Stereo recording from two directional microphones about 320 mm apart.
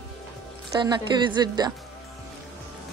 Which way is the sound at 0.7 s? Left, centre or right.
Centre.